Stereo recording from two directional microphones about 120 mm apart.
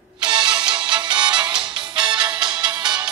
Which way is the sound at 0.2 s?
40° right (ahead or behind).